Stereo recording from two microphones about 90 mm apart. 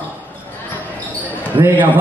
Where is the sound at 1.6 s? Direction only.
25° right (ahead or behind).